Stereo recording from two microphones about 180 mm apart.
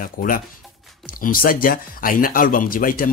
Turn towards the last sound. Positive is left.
turn(degrees=50)  # may be behind; listen again after turning